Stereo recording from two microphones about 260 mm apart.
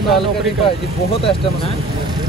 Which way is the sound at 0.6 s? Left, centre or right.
Left.